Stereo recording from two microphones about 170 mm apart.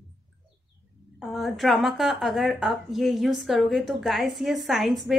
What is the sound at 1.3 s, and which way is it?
A woman's voice, centre (ahead or behind).